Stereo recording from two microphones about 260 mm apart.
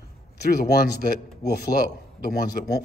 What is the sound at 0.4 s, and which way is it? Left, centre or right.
Speech, left.